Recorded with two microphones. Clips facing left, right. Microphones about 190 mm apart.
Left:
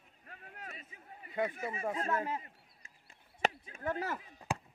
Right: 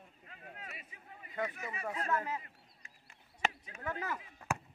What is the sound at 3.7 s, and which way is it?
Chop, 40° left (ahead or behind).